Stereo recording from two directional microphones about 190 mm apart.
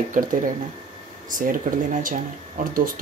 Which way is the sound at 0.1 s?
45° right (ahead or behind).